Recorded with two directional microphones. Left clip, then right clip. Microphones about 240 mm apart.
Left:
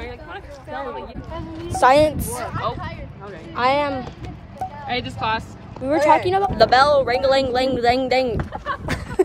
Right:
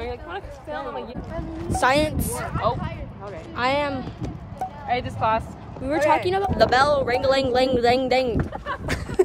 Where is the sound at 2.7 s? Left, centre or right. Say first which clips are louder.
Right 4 dB; right.